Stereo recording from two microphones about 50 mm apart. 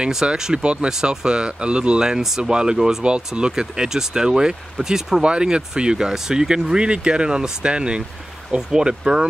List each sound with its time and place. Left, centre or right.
0.0 s speech: centre